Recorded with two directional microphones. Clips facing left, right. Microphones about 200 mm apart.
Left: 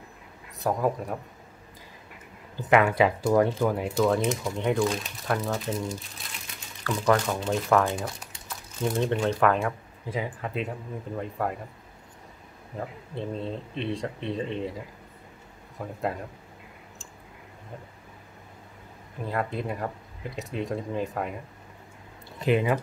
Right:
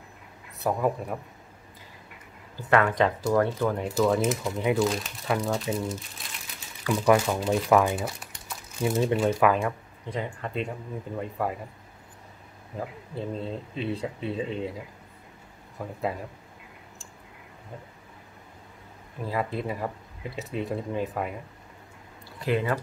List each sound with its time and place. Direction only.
0.6 s speech: centre (ahead or behind)
2.5 s speech: 15° left (ahead or behind); by 5.9 s centre (ahead or behind)
6.8 s speech: 10° right (ahead or behind)
12.7 s speech: centre (ahead or behind)
15.8 s speech: centre (ahead or behind)
19.2 s speech: centre (ahead or behind)
22.4 s speech: 15° left (ahead or behind)